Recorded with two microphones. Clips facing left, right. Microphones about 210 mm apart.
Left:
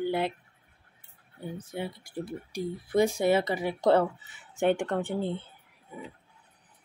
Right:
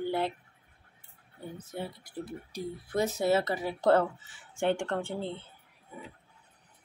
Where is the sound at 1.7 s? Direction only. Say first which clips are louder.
Left 2 dB; 10° left (ahead or behind).